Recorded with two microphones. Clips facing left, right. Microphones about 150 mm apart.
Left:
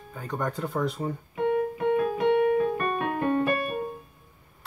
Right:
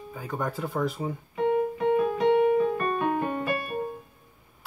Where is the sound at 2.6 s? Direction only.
35° right (ahead or behind).